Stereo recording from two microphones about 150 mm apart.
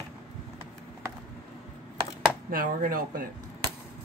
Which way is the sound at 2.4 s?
70° right (ahead or behind).